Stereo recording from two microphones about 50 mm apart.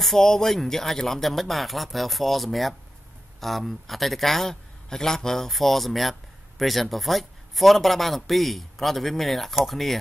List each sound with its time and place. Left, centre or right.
0.0 s speech: centre